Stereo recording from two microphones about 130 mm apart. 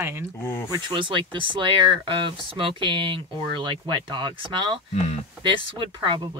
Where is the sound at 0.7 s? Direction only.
35° right (ahead or behind).